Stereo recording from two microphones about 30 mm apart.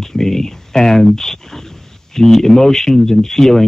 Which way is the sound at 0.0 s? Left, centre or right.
Centre.